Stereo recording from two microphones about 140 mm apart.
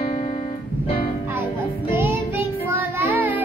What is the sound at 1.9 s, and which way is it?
Music, 15° right (ahead or behind).